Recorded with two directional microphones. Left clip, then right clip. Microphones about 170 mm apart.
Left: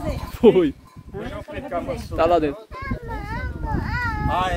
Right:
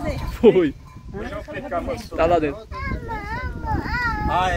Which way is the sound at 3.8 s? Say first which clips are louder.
Right 2 dB; 85° right.